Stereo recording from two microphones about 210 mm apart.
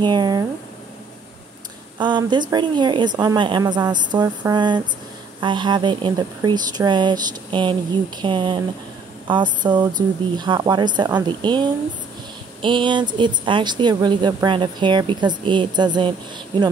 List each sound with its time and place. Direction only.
0.0 s a woman's voice: 20° right (ahead or behind)
2.0 s a woman's voice: 20° right (ahead or behind)